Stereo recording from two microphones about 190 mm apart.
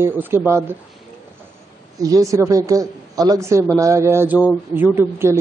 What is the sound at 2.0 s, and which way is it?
Speech, 20° right (ahead or behind).